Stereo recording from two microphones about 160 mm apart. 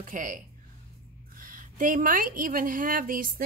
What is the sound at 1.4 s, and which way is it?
A woman's voice, 60° right (ahead or behind).